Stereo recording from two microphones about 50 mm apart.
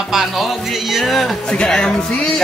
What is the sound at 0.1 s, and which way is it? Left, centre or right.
Music, centre.